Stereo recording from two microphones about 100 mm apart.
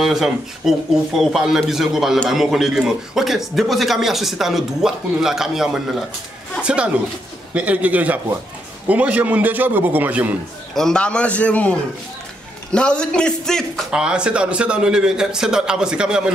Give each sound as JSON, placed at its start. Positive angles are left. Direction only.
{"t": 0.0, "sound": "a man's voice", "side_deg": -5}
{"t": 10.7, "sound": "a man's voice", "side_deg": 5}
{"t": 12.7, "sound": "a man's voice", "side_deg": 10}
{"t": 13.9, "sound": "a man's voice", "side_deg": -10}